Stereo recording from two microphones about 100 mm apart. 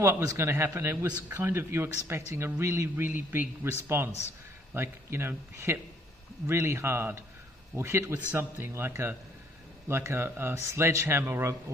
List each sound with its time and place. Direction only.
0.0 s speech: 30° right (ahead or behind)